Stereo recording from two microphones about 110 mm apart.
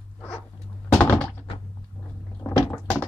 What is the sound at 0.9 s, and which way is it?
Thunk, 20° left (ahead or behind).